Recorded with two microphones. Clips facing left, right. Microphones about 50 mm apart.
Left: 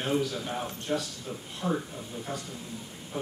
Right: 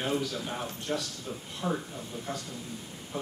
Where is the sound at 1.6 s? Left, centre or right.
Centre.